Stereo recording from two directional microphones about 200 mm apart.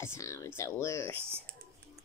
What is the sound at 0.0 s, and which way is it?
A child's voice, 15° left (ahead or behind).